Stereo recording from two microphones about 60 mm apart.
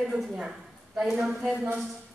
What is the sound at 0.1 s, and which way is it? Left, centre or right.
A woman's voice, centre.